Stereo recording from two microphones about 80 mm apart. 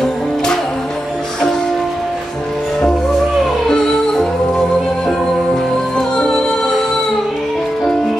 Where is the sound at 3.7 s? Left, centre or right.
Centre.